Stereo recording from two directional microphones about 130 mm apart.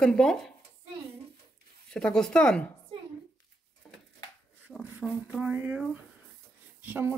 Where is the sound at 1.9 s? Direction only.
5° left (ahead or behind).